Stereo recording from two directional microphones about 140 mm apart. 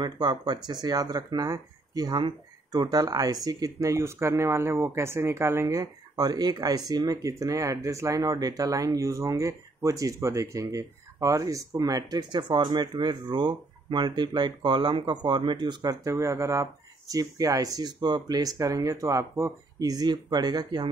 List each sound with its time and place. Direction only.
0.0 s speech: 30° right (ahead or behind)